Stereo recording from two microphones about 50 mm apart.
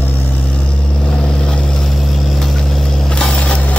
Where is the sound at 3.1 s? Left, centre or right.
Centre.